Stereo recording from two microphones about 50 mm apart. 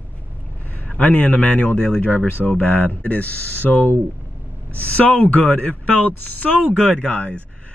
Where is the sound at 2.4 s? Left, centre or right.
Left.